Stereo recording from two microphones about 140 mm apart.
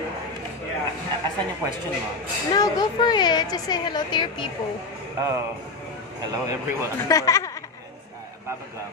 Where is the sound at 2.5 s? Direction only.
25° left (ahead or behind).